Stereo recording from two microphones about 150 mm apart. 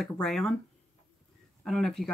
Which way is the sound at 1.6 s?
Centre (ahead or behind).